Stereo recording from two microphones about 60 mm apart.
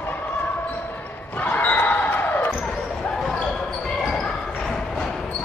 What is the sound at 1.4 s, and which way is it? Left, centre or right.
Basketball bounce, left.